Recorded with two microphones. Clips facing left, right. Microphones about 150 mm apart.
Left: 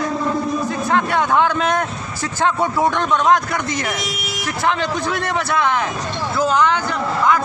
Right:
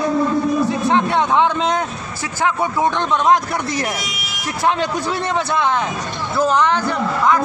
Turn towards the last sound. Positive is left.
turn(degrees=0)  # may be behind; listen again after turning